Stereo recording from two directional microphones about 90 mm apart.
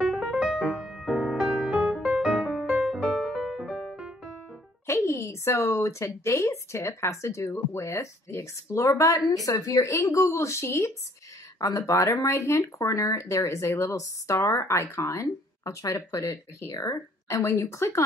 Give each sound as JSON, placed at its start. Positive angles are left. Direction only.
{"t": 0.0, "sound": "music", "side_deg": -5}
{"t": 4.8, "sound": "speech", "side_deg": 30}